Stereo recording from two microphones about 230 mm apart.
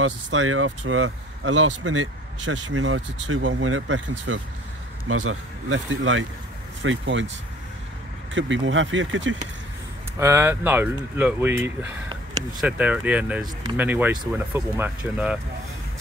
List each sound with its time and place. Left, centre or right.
0.0 s speech: right
8.4 s speech: right
10.1 s speech: centre